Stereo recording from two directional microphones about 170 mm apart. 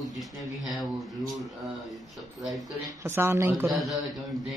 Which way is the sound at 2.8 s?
15° right (ahead or behind).